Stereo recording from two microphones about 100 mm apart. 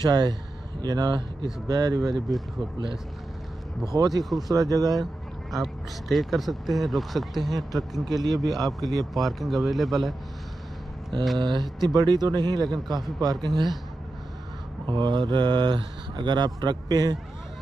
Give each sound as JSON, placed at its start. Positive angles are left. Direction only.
{"t": 0.0, "sound": "speech", "side_deg": -45}
{"t": 3.8, "sound": "speech", "side_deg": -40}
{"t": 4.2, "sound": "speech", "side_deg": 0}
{"t": 4.5, "sound": "speech", "side_deg": -40}
{"t": 5.5, "sound": "speech", "side_deg": 0}
{"t": 11.3, "sound": "speech", "side_deg": -45}
{"t": 12.6, "sound": "speech", "side_deg": 0}
{"t": 13.2, "sound": "speech", "side_deg": -40}
{"t": 14.9, "sound": "speech", "side_deg": -50}